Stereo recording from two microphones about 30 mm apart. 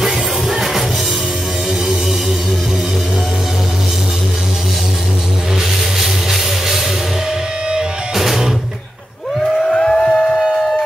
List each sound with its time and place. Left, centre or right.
0.0 s music: centre
5.9 s music: centre
9.7 s a sound: left